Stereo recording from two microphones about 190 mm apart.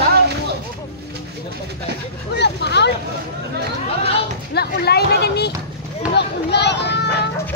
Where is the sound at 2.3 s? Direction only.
65° left (ahead or behind).